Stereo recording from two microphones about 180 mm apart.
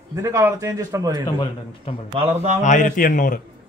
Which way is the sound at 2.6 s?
45° left (ahead or behind).